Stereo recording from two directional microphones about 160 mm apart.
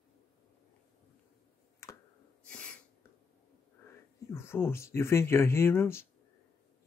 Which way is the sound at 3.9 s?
15° left (ahead or behind).